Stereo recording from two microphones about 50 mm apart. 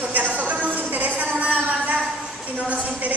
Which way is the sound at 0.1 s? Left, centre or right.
Right.